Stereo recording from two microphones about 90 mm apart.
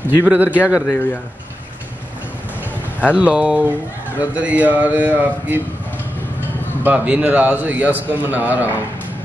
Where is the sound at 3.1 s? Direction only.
15° right (ahead or behind).